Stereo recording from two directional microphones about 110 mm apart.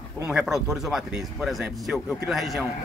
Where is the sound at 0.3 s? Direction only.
5° right (ahead or behind).